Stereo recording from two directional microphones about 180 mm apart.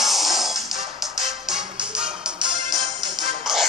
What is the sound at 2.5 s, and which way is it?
Music, 25° right (ahead or behind).